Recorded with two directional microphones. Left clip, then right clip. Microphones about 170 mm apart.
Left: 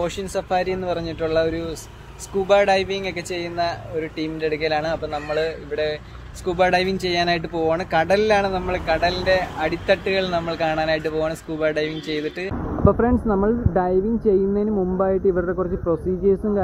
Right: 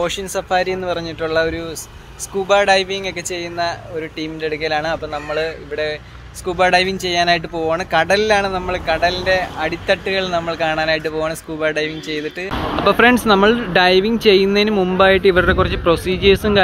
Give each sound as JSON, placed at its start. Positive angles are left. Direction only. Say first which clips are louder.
{"t": 0.0, "sound": "speech", "louder": "right 4 dB", "side_deg": 0}
{"t": 12.8, "sound": "speech", "louder": "right 7 dB", "side_deg": -25}